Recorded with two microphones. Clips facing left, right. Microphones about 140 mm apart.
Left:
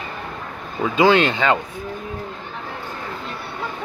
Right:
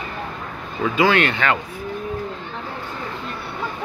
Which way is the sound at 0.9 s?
25° left (ahead or behind).